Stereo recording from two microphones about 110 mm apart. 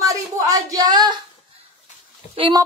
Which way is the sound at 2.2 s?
90° left.